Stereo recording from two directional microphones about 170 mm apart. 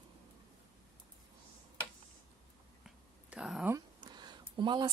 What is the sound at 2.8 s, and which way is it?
Whispering, 5° right (ahead or behind).